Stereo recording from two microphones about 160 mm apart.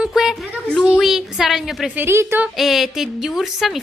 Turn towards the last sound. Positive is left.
turn(degrees=0)  # may be behind; listen again after turning